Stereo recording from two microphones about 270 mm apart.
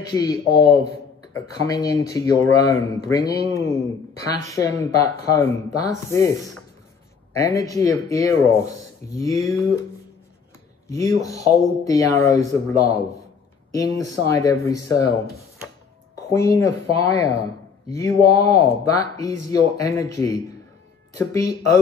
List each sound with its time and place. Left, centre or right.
0.1 s speech: centre
11.1 s speech: centre